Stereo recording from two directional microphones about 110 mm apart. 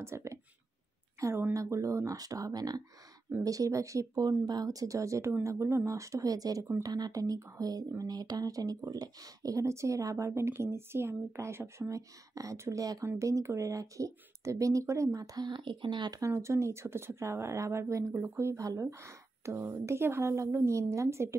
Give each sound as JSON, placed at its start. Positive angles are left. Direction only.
{"t": 0.0, "sound": "speech", "side_deg": -25}
{"t": 16.2, "sound": "speech", "side_deg": -25}